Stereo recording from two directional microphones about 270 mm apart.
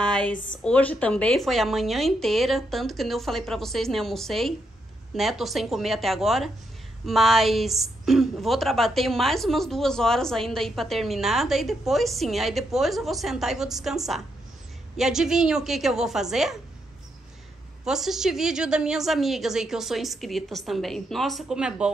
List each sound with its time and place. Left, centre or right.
0.0 s a woman's voice: centre
17.8 s a woman's voice: centre